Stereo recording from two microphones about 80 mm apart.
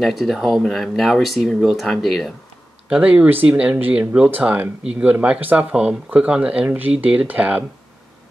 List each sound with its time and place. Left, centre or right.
0.0 s speech: centre
2.9 s speech: centre